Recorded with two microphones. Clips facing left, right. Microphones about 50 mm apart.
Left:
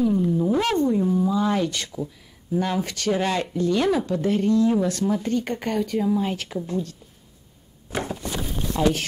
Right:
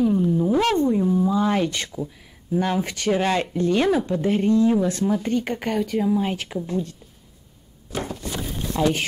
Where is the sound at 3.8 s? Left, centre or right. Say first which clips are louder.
Right 1 dB; right.